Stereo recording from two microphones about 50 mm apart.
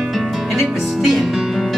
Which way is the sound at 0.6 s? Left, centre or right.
Centre.